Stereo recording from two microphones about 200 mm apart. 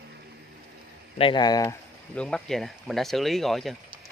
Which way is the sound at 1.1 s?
25° left (ahead or behind).